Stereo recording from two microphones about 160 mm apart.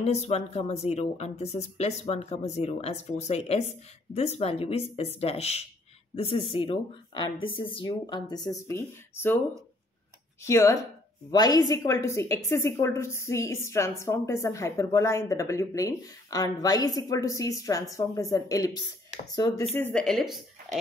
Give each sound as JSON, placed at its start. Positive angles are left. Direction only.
{"t": 0.0, "sound": "a woman's voice", "side_deg": 40}
{"t": 10.4, "sound": "a woman's voice", "side_deg": 15}
{"t": 19.7, "sound": "a woman's voice", "side_deg": 10}